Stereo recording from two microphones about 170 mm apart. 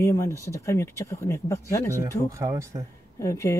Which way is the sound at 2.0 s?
20° right (ahead or behind).